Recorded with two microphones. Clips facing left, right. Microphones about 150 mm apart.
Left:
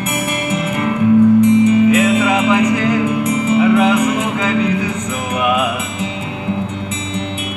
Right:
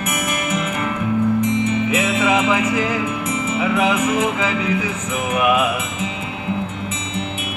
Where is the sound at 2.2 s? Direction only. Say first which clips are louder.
Left 4 dB; 35° left (ahead or behind).